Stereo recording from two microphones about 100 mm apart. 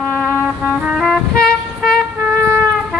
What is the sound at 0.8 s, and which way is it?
Music, 10° right (ahead or behind).